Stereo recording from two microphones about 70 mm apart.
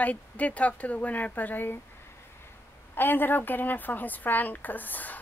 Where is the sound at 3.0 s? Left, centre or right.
Left.